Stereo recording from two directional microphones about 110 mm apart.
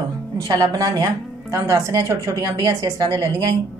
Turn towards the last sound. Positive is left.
turn(degrees=-35)  # may be behind; listen again after turning